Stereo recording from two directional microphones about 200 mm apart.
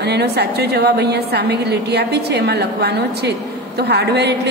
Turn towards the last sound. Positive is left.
turn(degrees=-55)  # may be behind; listen again after turning